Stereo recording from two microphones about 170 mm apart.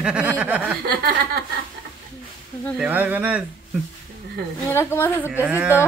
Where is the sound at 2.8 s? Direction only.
10° right (ahead or behind).